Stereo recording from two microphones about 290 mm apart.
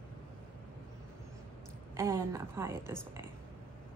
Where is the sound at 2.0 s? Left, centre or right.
Centre.